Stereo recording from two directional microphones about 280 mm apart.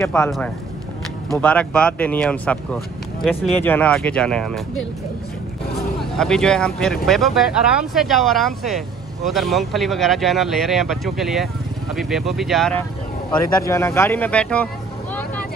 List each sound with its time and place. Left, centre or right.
0.0 s speech: centre
5.9 s speech: centre